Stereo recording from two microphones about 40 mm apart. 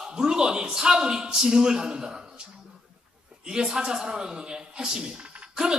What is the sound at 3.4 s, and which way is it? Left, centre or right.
A woman's voice, centre.